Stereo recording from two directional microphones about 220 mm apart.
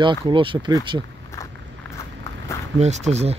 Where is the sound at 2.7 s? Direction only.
30° right (ahead or behind).